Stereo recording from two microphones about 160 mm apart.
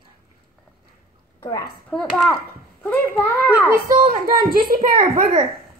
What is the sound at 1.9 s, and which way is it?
Speech, centre (ahead or behind).